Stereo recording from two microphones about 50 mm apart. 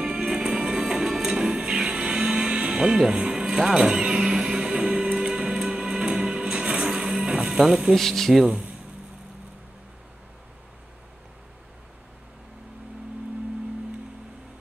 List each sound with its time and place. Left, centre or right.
0.0 s music: centre
7.9 s speech: centre